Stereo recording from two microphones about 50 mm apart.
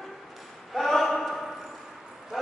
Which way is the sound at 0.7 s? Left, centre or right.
Centre.